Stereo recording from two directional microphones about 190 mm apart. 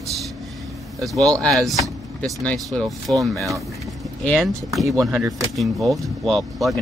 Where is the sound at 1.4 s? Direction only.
Centre (ahead or behind).